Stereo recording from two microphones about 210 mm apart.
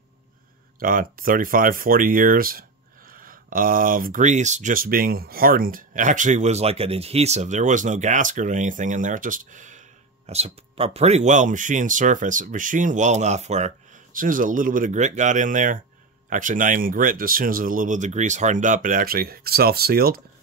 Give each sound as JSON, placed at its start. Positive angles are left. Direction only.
{"t": 0.7, "sound": "speech", "side_deg": -40}